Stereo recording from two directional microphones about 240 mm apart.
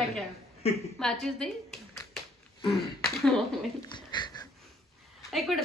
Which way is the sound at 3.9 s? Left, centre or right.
Centre.